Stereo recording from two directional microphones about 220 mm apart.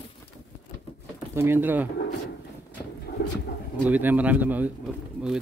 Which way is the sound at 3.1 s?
50° left (ahead or behind).